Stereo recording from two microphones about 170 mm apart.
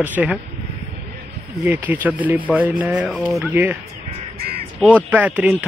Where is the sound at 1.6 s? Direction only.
10° right (ahead or behind).